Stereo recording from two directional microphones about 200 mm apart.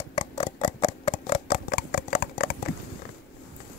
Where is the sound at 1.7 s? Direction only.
50° left (ahead or behind).